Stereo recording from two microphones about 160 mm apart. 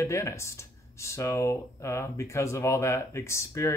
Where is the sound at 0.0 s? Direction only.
20° left (ahead or behind).